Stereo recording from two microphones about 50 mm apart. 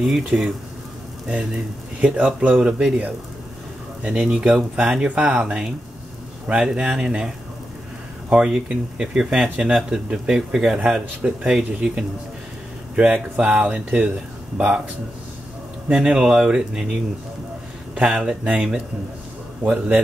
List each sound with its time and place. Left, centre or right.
0.0 s speech: centre
2.0 s speech: right
4.2 s speech: centre
8.3 s speech: right
15.9 s speech: centre